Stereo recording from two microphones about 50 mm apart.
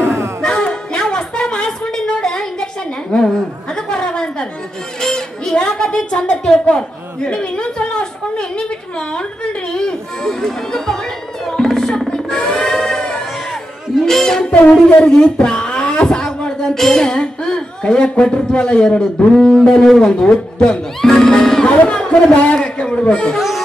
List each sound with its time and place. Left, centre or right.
0.0 s music: right
0.4 s a sound: centre
3.2 s speech: centre
3.9 s chuckle: centre
5.0 s a sound: centre
5.8 s a woman's voice: centre
11.4 s music: centre
15.0 s a sound: centre
18.0 s a man's voice: left
21.6 s a man's voice: left
23.3 s speech: centre